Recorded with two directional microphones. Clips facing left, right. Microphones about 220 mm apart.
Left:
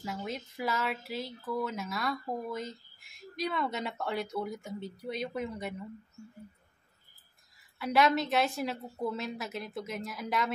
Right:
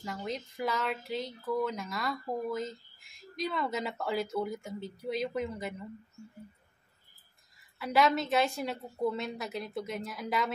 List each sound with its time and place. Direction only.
0.0 s speech: 5° left (ahead or behind)
7.8 s speech: centre (ahead or behind)